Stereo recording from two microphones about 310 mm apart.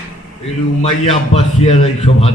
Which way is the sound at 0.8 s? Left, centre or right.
Centre.